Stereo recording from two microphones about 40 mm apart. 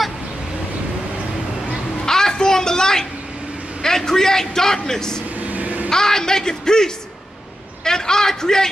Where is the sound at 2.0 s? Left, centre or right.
Centre.